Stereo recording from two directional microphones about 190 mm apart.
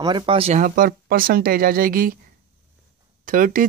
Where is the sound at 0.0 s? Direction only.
25° right (ahead or behind); by 2.1 s 50° right (ahead or behind).